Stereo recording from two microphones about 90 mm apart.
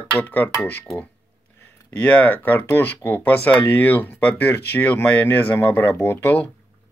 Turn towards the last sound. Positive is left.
turn(degrees=25)  # may be behind; listen again after turning